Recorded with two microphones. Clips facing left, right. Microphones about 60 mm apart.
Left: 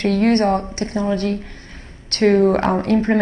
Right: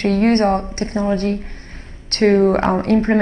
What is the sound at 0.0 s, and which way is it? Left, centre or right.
A woman's voice, right.